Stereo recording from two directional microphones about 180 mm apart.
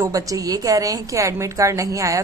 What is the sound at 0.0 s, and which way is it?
A woman's voice, 20° right (ahead or behind).